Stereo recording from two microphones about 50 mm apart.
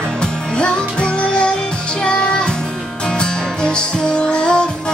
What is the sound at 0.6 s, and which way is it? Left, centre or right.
Music, centre.